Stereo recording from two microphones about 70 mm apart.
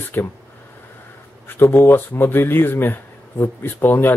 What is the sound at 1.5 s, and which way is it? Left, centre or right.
Speech, left.